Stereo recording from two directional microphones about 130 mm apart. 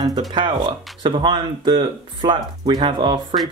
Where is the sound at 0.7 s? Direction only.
35° right (ahead or behind).